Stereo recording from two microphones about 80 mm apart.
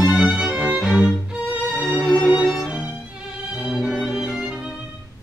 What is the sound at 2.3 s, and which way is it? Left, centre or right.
Violin, centre.